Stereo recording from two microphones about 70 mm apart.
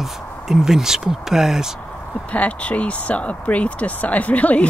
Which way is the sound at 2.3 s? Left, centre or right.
Centre.